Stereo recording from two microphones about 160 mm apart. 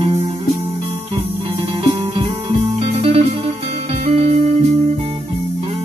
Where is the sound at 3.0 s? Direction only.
40° right (ahead or behind).